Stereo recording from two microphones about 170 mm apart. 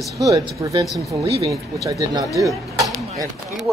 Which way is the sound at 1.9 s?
20° right (ahead or behind).